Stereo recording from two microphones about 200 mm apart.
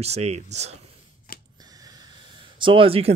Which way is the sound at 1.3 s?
45° left (ahead or behind).